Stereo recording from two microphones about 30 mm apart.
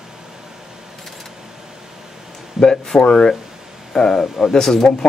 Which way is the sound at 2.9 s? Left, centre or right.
Left.